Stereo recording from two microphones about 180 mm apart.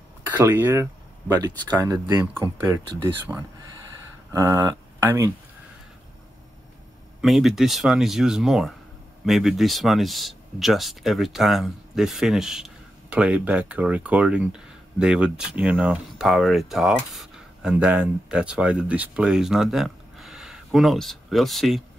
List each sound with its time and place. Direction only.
0.3 s speech: 10° right (ahead or behind)
7.2 s speech: centre (ahead or behind)